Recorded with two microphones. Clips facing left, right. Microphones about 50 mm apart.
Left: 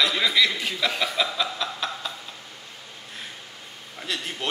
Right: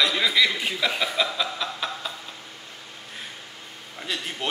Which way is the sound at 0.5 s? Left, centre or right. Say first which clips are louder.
Right 1 dB; centre.